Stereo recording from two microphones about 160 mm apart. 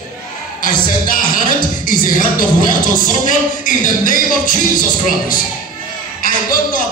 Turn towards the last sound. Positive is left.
turn(degrees=60)  # may be behind; listen again after turning